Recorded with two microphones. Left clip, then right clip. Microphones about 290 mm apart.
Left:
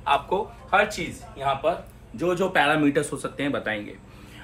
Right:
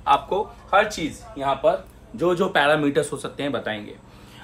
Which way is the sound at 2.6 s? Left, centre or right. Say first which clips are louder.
Right 2 dB; centre.